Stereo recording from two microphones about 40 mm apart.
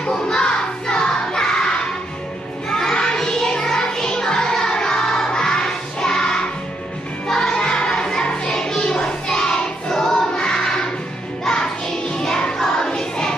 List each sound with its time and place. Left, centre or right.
0.1 s music: centre
2.7 s music: centre